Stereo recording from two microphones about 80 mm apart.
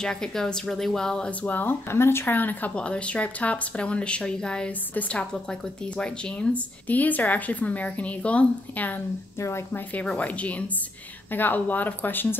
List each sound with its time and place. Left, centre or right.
0.0 s speech: centre
10.0 s speech: centre